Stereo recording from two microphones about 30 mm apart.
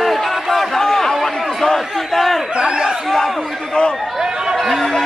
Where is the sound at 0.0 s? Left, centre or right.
Centre.